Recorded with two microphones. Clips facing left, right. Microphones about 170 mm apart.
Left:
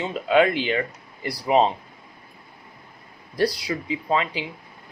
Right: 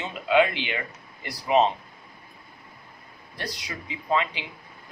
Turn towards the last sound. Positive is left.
turn(degrees=30)  # may be behind; listen again after turning